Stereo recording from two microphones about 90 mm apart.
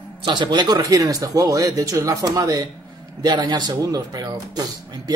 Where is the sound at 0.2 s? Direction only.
55° right (ahead or behind).